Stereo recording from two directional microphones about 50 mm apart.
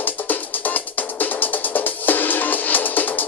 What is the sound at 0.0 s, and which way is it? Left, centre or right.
Music, left.